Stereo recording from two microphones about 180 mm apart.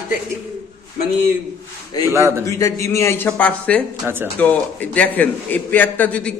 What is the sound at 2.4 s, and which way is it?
A man's voice, 15° left (ahead or behind).